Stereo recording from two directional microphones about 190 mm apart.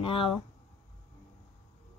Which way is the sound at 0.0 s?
30° left (ahead or behind).